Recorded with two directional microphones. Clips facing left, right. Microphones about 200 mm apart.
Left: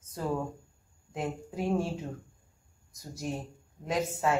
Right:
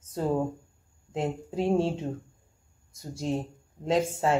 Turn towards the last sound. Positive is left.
turn(degrees=-30)  # may be behind; listen again after turning